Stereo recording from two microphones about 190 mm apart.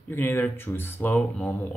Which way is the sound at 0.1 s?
10° left (ahead or behind).